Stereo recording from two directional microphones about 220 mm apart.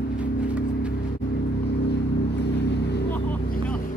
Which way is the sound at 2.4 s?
50° left (ahead or behind).